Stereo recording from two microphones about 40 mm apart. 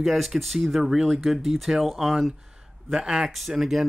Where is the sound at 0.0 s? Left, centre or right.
Centre.